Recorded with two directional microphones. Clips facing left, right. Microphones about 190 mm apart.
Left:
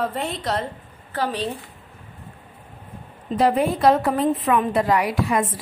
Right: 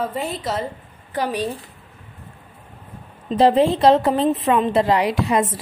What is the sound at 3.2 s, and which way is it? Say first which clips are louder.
A woman's voice: right 4 dB; 25° right (ahead or behind).